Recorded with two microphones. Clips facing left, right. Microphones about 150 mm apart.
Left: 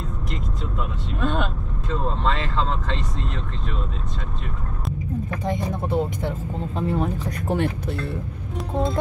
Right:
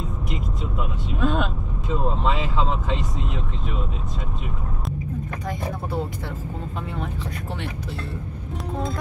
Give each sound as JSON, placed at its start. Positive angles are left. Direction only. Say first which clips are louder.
{"t": 1.2, "sound": "vehicle", "louder": "right 1 dB", "side_deg": 0}
{"t": 5.5, "sound": "speech", "louder": "left 4 dB", "side_deg": 20}
{"t": 6.9, "sound": "speech", "louder": "left 6 dB", "side_deg": 45}